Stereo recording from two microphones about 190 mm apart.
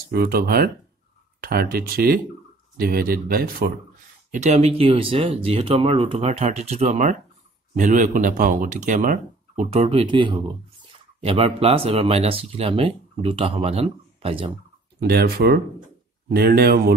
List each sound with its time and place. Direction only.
0.1 s speech: 55° right (ahead or behind)
4.3 s speech: 35° right (ahead or behind)
15.0 s speech: 55° right (ahead or behind)